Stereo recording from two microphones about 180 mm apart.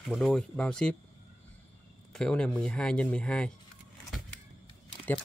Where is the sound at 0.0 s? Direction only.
Centre (ahead or behind).